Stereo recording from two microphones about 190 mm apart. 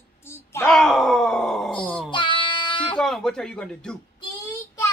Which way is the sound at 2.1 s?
25° left (ahead or behind).